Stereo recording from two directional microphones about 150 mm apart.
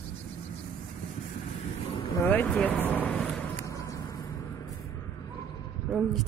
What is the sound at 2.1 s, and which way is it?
Speech, 15° left (ahead or behind).